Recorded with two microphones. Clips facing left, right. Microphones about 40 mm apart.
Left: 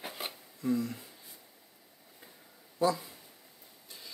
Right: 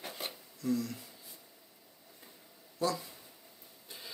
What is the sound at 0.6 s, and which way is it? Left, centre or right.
Speech, left.